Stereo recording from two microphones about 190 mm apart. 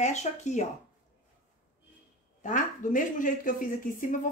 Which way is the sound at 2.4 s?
45° left (ahead or behind).